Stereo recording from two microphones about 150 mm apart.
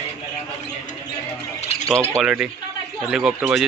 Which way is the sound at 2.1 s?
5° right (ahead or behind).